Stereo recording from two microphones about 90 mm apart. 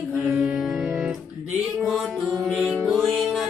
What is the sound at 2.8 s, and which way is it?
Music, centre (ahead or behind).